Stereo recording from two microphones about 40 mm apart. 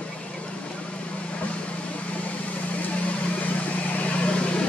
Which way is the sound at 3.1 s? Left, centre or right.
Left.